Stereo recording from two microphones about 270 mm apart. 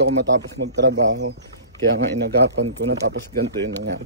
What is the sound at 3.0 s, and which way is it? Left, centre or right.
Speech, right.